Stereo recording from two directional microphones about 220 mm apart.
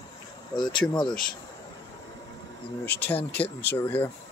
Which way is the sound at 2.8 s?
45° left (ahead or behind).